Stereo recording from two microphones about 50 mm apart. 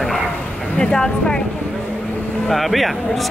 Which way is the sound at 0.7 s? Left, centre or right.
Centre.